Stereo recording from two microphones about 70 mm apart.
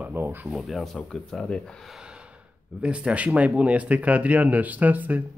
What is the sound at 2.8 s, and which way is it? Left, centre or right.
Speech, centre.